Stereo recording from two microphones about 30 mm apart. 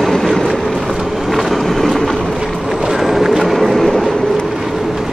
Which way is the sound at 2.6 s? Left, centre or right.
Centre.